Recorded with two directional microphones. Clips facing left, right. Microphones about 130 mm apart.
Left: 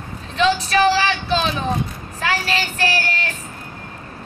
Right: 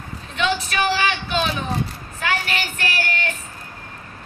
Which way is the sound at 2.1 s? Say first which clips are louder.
Left 2 dB; 30° left (ahead or behind).